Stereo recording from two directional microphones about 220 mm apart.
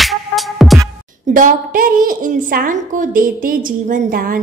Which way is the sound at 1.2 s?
40° right (ahead or behind).